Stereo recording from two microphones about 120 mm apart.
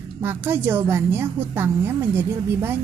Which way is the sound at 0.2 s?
20° right (ahead or behind).